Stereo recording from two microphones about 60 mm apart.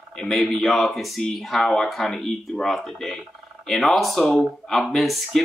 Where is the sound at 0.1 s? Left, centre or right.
Centre.